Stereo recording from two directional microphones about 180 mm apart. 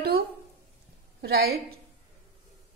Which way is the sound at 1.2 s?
60° right (ahead or behind).